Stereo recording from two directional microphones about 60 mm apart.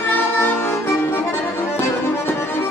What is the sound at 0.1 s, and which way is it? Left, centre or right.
Music, left.